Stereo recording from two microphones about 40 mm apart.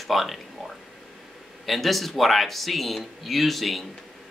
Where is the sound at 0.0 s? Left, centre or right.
Centre.